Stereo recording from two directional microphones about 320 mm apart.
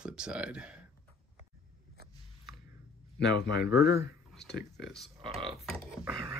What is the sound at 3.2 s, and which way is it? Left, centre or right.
Speech, left.